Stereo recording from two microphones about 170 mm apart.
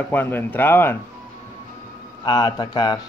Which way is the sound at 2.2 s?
25° left (ahead or behind).